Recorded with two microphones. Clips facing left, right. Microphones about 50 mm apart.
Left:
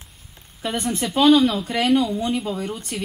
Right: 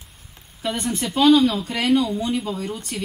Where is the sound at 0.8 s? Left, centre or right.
Left.